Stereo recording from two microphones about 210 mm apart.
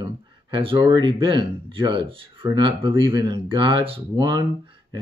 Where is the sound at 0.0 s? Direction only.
25° right (ahead or behind).